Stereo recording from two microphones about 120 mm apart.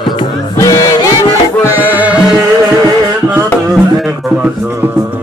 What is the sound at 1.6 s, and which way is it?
Music, 15° right (ahead or behind).